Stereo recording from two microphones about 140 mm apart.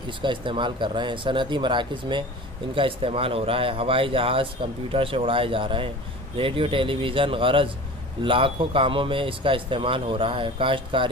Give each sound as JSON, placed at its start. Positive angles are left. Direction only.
{"t": 0.2, "sound": "speech", "side_deg": -35}